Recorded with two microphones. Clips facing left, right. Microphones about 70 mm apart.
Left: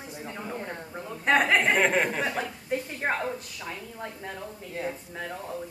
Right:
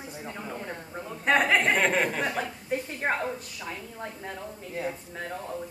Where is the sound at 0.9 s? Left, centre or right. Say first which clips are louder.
Left 1 dB; centre.